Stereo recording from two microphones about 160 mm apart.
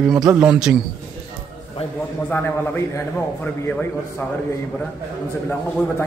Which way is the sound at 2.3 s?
15° left (ahead or behind).